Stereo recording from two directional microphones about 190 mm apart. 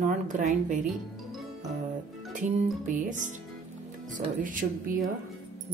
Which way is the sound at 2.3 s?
40° right (ahead or behind).